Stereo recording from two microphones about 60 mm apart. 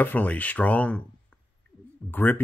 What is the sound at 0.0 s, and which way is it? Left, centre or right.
Speech, left.